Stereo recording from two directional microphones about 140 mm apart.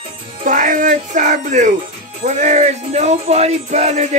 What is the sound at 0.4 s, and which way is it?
Music, 70° right (ahead or behind).